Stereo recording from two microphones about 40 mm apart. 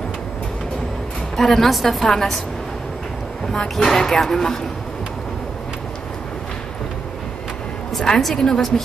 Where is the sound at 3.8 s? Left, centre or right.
Centre.